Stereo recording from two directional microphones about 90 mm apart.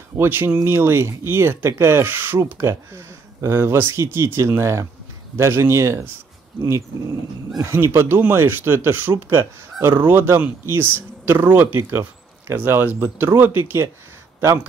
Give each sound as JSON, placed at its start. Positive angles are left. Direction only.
{"t": 0.2, "sound": "speech", "side_deg": -25}
{"t": 7.7, "sound": "speech", "side_deg": -25}